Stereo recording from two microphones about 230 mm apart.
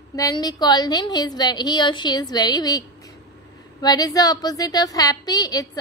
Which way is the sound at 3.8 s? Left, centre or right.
Centre.